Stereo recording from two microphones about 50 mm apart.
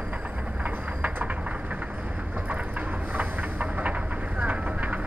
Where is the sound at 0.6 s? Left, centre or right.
Right.